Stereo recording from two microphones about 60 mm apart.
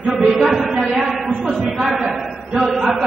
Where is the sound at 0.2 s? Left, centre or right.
Centre.